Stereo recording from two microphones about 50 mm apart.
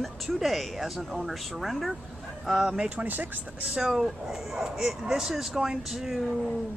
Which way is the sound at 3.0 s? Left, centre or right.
Right.